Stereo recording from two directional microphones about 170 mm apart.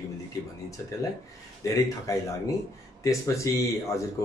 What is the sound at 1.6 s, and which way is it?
Speech, 20° left (ahead or behind).